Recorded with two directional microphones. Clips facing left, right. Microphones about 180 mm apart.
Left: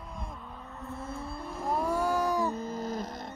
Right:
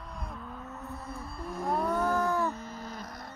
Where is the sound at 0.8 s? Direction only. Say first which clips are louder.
Left 6 dB; centre (ahead or behind).